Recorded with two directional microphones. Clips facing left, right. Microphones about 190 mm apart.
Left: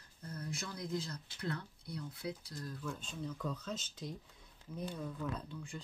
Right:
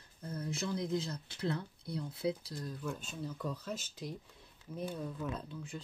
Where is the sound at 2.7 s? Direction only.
10° right (ahead or behind).